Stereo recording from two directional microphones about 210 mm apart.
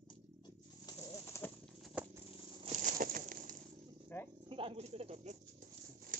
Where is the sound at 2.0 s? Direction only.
5° right (ahead or behind).